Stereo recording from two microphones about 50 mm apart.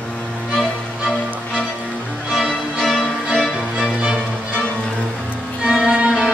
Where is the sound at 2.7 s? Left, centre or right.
Centre.